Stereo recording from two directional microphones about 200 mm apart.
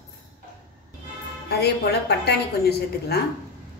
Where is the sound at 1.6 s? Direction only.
55° left (ahead or behind).